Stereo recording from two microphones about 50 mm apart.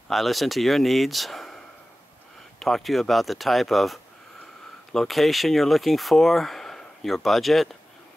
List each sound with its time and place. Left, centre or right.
0.1 s speech: centre
2.6 s speech: centre